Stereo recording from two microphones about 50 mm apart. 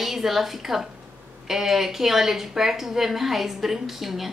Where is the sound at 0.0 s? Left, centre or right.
Centre.